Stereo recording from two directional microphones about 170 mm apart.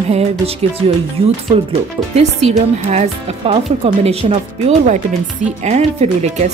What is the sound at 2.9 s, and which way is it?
Speech, 35° right (ahead or behind).